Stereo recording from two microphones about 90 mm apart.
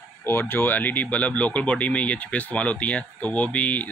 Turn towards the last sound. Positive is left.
turn(degrees=15)  # may be behind; listen again after turning